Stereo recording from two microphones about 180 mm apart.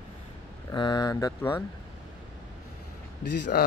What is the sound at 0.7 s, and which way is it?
Speech, 25° left (ahead or behind).